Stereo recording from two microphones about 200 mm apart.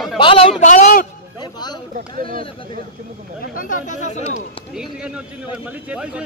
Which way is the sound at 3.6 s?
40° left (ahead or behind).